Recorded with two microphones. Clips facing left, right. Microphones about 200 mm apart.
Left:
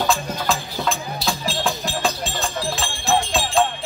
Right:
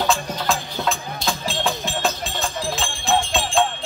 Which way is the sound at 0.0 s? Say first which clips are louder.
Even; centre (ahead or behind).